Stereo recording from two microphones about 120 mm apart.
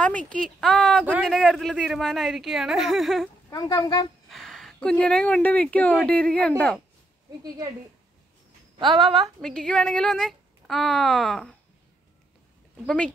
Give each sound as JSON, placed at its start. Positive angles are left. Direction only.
{"t": 0.0, "sound": "speech", "side_deg": 10}
{"t": 0.4, "sound": "a sound", "side_deg": 5}
{"t": 3.4, "sound": "speech", "side_deg": 35}
{"t": 4.3, "sound": "speech", "side_deg": 0}
{"t": 8.7, "sound": "speech", "side_deg": -45}
{"t": 9.0, "sound": "a sound", "side_deg": 0}
{"t": 12.8, "sound": "speech", "side_deg": 10}